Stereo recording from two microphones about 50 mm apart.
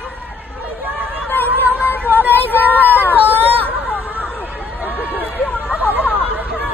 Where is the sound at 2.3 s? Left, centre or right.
Left.